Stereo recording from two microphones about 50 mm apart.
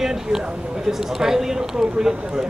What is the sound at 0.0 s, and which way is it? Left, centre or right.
Speech, centre.